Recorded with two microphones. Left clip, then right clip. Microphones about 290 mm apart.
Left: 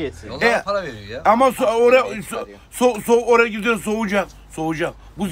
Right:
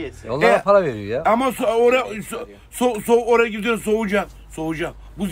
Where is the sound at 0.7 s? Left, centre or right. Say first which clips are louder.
Right 8 dB; centre.